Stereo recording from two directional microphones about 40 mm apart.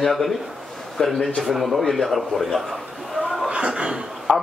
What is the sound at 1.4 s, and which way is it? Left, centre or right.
A man's voice, centre.